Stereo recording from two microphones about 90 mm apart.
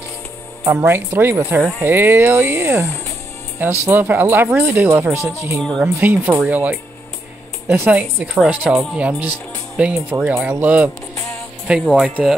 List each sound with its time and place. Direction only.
0.7 s speech: 25° right (ahead or behind)
5.6 s a woman's voice: 5° left (ahead or behind)
5.9 s speech: 20° right (ahead or behind)